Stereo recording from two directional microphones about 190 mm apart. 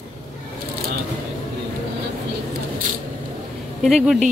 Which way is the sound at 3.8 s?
Centre (ahead or behind).